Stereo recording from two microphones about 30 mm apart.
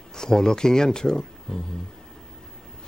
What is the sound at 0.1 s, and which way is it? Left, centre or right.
Speech, left.